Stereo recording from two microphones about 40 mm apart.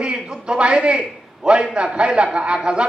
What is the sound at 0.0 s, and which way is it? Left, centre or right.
A man's voice, right.